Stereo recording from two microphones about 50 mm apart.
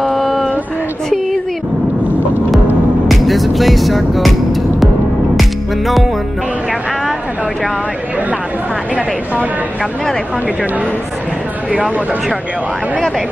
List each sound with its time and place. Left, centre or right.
0.0 s a sound: centre
3.1 s music: centre
8.9 s speech: right
11.7 s speech: right